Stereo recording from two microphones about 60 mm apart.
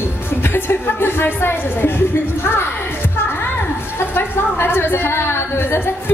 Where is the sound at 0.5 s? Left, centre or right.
Left.